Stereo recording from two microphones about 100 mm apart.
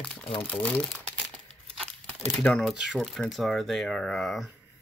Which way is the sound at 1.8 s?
5° left (ahead or behind).